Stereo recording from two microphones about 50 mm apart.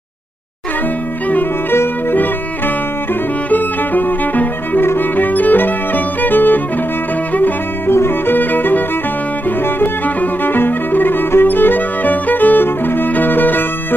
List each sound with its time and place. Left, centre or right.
1.7 s music: left
3.4 s violin: left
4.8 s music: left
7.3 s bowed string instrument: left
7.9 s violin: left
8.4 s music: left